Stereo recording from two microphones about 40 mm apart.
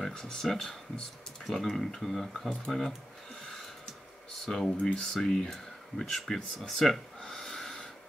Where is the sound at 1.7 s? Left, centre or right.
Centre.